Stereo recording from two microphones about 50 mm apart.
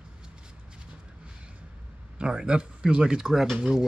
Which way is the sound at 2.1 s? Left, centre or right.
Centre.